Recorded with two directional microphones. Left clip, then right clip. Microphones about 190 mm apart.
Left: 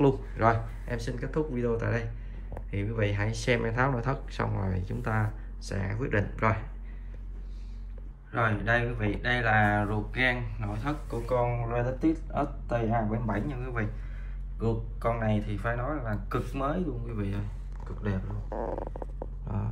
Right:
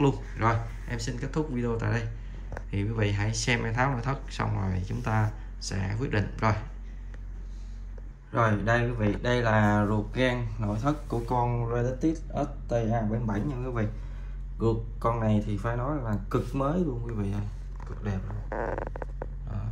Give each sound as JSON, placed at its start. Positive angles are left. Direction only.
{"t": 0.0, "sound": "speech", "side_deg": 0}
{"t": 8.3, "sound": "speech", "side_deg": -15}
{"t": 11.5, "sound": "speech", "side_deg": -10}
{"t": 13.5, "sound": "speech", "side_deg": -20}
{"t": 15.0, "sound": "speech", "side_deg": -20}
{"t": 18.5, "sound": "a sound", "side_deg": 35}